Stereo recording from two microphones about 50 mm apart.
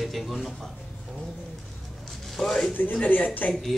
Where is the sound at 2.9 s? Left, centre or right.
Left.